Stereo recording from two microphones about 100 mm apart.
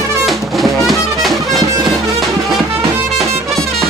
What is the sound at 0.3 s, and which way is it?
Music, centre (ahead or behind).